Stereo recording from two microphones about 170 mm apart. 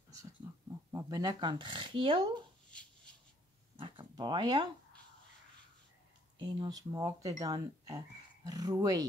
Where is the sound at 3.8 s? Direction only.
30° right (ahead or behind).